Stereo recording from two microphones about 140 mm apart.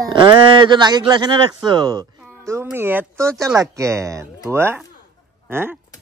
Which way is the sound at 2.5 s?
15° right (ahead or behind).